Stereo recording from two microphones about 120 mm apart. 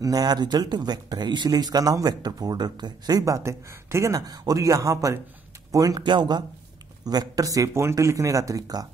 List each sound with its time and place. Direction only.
0.0 s speech: 35° right (ahead or behind)